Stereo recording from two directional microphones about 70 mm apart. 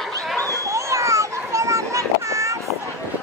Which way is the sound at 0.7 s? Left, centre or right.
Right.